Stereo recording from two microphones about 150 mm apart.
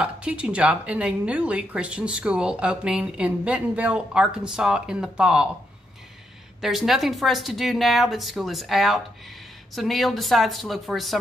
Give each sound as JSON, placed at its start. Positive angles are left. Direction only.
{"t": 0.0, "sound": "speech", "side_deg": -5}
{"t": 6.6, "sound": "speech", "side_deg": 0}